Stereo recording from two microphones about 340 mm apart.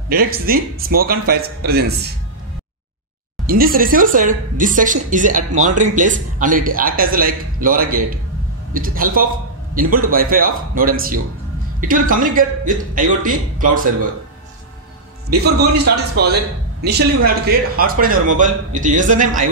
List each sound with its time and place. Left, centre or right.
0.1 s speech: right
3.4 s speech: right
15.2 s speech: right